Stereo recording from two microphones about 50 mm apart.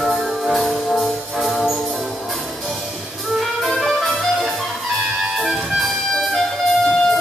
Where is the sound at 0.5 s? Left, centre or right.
Centre.